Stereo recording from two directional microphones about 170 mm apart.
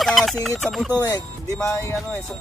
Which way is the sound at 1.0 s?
15° left (ahead or behind).